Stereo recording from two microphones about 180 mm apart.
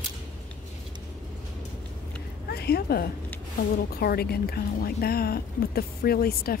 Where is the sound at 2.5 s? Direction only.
60° left (ahead or behind).